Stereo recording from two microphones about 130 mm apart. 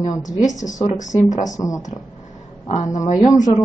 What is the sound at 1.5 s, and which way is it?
Speech, 30° left (ahead or behind).